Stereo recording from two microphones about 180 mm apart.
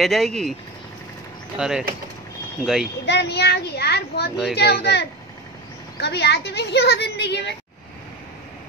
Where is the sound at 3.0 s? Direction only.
70° left (ahead or behind).